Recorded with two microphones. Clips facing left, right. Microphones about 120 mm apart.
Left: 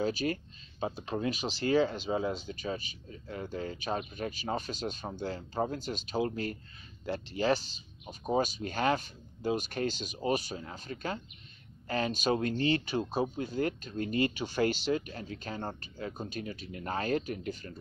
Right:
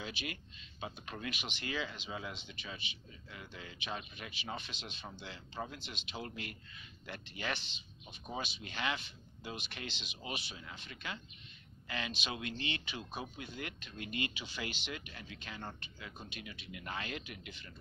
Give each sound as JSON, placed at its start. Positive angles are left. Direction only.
{"t": 0.0, "sound": "speech", "side_deg": 40}